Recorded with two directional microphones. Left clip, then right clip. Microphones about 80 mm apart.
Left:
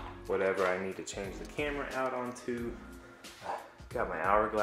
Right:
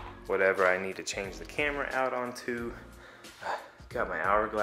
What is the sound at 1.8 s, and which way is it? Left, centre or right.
Speech, centre.